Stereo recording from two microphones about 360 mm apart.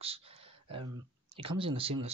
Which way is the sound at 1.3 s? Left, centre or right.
Centre.